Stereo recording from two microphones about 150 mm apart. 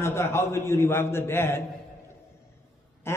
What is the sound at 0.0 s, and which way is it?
A man's voice, 15° left (ahead or behind).